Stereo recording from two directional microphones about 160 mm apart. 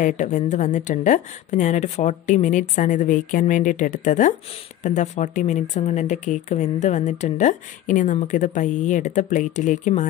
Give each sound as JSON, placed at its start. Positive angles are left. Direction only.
{"t": 0.0, "sound": "speech", "side_deg": 50}